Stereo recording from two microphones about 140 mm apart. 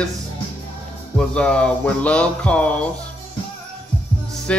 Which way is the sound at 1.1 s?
5° left (ahead or behind).